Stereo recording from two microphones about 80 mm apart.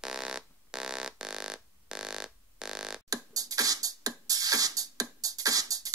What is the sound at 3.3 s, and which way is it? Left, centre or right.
Beatboxing, right.